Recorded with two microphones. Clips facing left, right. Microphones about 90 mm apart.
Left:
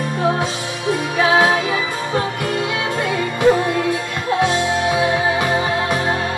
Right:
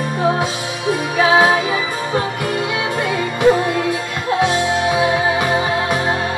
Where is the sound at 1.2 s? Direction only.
5° right (ahead or behind).